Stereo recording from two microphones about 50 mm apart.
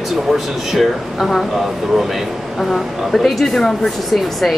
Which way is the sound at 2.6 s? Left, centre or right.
Centre.